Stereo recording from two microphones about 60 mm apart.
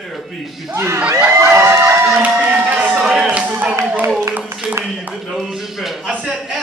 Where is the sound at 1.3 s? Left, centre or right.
Right.